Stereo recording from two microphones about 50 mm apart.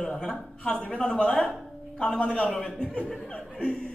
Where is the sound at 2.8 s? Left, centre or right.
Centre.